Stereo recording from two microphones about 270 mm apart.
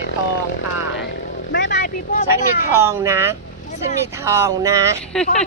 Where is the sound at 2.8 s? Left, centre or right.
Centre.